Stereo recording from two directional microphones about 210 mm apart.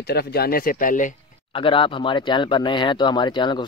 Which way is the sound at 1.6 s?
25° left (ahead or behind).